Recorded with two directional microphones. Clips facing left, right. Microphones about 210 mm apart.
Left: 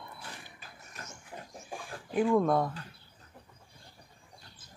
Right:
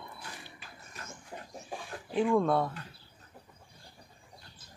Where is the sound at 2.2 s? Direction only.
Centre (ahead or behind).